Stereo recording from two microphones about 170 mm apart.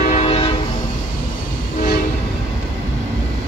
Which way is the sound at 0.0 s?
40° left (ahead or behind).